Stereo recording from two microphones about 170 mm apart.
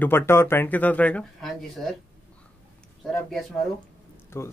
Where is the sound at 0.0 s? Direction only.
15° left (ahead or behind).